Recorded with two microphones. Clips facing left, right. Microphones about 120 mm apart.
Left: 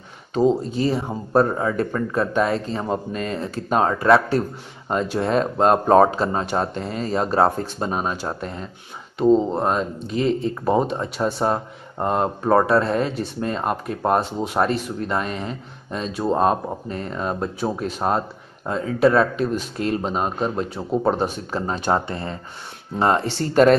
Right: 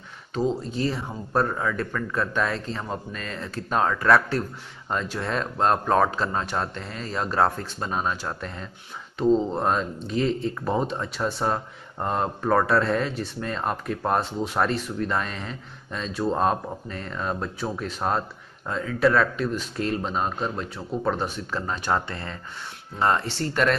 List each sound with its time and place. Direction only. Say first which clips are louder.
0.3 s speech: left 7 dB; 20° left (ahead or behind)